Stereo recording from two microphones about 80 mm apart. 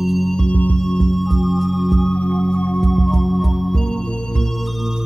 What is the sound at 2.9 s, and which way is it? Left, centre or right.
Music, centre.